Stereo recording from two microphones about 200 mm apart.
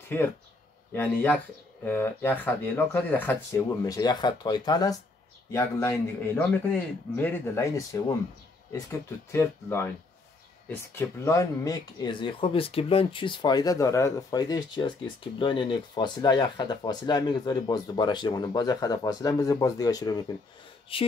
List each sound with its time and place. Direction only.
0.1 s a man's voice: 10° left (ahead or behind)
3.8 s a man's voice: 20° left (ahead or behind)
9.3 s a man's voice: 10° left (ahead or behind)